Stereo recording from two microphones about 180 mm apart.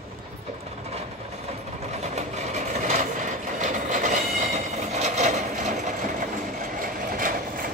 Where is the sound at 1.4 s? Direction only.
35° right (ahead or behind).